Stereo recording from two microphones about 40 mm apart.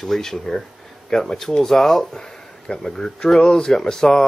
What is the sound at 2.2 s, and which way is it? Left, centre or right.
Speech, left.